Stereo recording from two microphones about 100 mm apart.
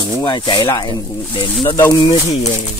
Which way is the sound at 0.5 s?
45° left (ahead or behind).